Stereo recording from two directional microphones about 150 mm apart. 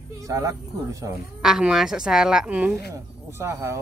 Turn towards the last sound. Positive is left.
turn(degrees=-20)  # may be behind; listen again after turning